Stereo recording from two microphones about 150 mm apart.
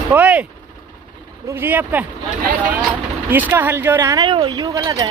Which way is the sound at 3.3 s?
15° right (ahead or behind).